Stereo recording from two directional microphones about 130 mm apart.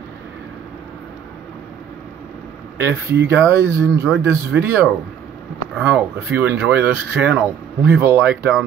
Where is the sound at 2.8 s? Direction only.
20° right (ahead or behind).